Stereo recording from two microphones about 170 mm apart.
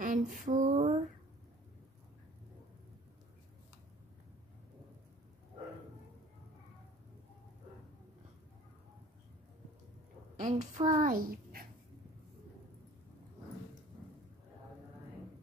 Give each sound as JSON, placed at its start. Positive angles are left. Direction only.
{"t": 0.0, "sound": "female singing", "side_deg": -50}
{"t": 10.3, "sound": "a sound", "side_deg": -45}
{"t": 10.9, "sound": "a child's voice", "side_deg": -50}